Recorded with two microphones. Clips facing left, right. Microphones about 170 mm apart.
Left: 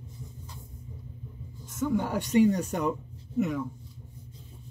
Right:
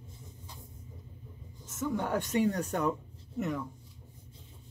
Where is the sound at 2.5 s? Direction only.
15° left (ahead or behind).